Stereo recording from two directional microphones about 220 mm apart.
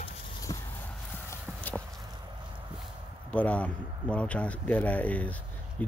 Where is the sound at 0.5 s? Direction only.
20° left (ahead or behind).